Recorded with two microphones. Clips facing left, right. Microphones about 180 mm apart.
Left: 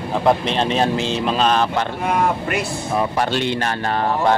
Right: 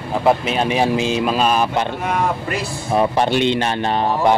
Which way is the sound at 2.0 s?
Centre (ahead or behind).